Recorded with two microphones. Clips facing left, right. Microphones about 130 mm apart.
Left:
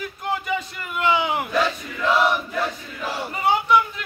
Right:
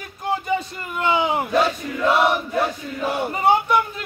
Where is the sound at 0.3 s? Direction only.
30° right (ahead or behind).